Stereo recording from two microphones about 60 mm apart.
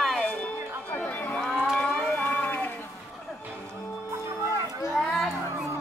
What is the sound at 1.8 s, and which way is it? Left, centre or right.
Music, left.